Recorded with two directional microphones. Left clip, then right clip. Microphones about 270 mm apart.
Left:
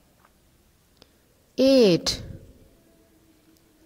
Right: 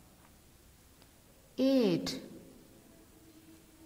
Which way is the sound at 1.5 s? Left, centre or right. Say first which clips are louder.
Left 12 dB; left.